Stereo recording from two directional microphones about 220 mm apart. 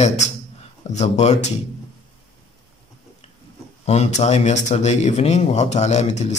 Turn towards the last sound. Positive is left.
turn(degrees=30)  # may be behind; listen again after turning